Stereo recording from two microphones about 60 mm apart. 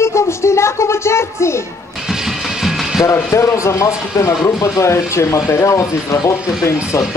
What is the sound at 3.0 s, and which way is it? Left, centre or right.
Speech, left.